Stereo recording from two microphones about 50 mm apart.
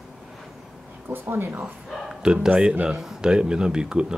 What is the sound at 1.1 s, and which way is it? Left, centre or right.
Speech, right.